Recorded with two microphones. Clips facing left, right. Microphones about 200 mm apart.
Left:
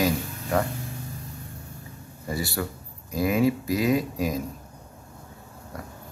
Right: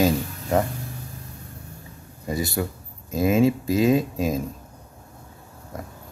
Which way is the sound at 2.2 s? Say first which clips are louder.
Right 3 dB; 20° right (ahead or behind).